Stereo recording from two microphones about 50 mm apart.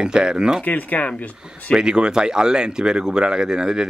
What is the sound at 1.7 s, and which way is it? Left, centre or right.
Speech, centre.